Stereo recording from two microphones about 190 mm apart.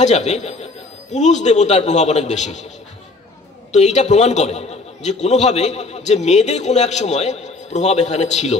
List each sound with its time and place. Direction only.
0.0 s a man's voice: 35° left (ahead or behind)
3.7 s a man's voice: 35° left (ahead or behind)